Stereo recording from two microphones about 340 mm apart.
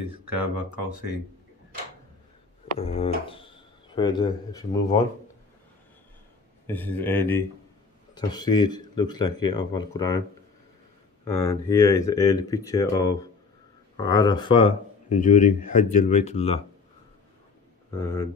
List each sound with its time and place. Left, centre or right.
0.1 s speech: right
2.8 s speech: centre
6.7 s speech: centre
11.4 s speech: centre
17.9 s speech: centre